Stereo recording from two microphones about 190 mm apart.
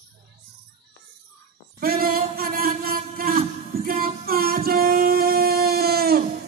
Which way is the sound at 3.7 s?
50° right (ahead or behind).